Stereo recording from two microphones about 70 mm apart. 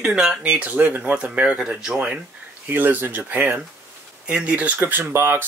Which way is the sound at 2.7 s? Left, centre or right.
Right.